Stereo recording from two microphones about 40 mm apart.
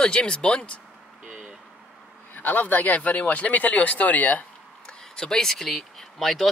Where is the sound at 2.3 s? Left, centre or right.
Left.